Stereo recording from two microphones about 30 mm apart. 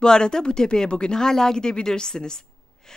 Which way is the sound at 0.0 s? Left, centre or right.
Left.